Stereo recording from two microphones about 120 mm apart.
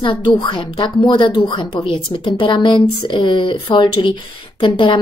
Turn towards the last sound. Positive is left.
turn(degrees=45)  # may be behind; listen again after turning